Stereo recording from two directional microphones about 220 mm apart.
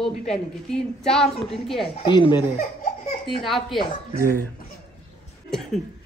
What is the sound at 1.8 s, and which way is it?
Speech, 20° left (ahead or behind).